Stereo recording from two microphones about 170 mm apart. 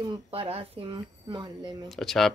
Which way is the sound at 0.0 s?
30° right (ahead or behind).